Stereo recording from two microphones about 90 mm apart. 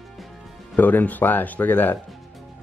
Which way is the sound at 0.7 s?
20° left (ahead or behind).